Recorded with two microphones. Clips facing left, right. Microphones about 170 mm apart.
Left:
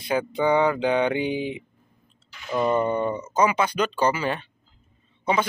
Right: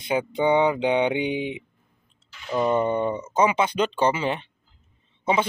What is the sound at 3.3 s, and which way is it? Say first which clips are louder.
Speech: right 1 dB; 25° right (ahead or behind).